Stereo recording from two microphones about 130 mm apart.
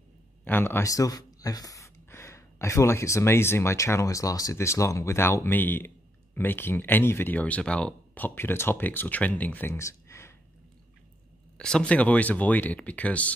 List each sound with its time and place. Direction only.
0.5 s speech: 15° left (ahead or behind)
11.5 s speech: 5° left (ahead or behind)